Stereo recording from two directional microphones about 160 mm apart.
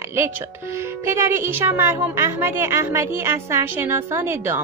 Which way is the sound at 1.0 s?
15° right (ahead or behind).